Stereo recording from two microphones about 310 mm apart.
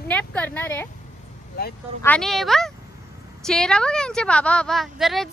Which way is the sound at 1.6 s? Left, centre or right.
Left.